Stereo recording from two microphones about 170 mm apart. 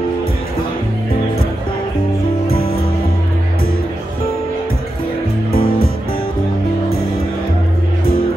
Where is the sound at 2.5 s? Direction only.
65° left (ahead or behind).